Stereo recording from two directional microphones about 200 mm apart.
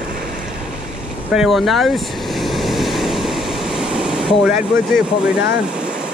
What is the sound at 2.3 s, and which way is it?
Waves, centre (ahead or behind).